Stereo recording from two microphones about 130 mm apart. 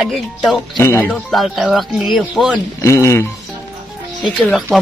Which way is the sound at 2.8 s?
20° left (ahead or behind).